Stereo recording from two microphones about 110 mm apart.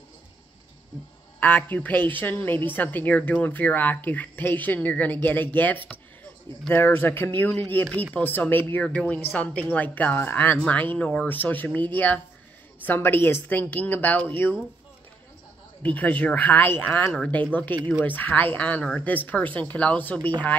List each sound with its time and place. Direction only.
1.4 s speech: 15° left (ahead or behind)
15.8 s speech: 15° left (ahead or behind)